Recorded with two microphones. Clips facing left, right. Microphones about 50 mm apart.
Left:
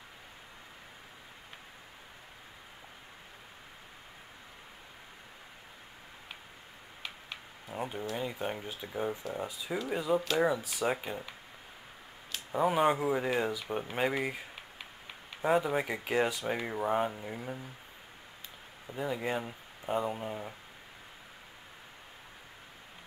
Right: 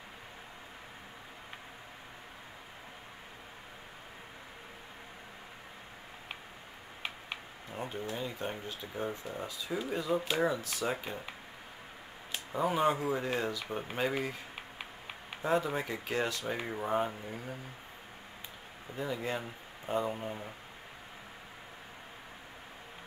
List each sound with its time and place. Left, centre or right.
7.6 s speech: centre
12.5 s speech: centre
15.4 s speech: centre
18.9 s speech: centre